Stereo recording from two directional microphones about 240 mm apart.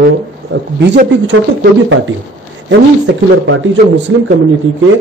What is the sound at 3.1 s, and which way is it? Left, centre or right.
Speech, right.